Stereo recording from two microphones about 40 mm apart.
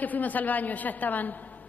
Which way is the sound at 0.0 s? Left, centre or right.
Left.